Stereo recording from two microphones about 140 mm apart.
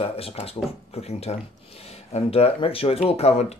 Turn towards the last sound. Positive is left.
turn(degrees=50)  # may be behind; listen again after turning